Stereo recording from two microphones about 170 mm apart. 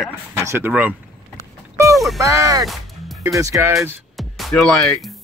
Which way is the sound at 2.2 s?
20° right (ahead or behind).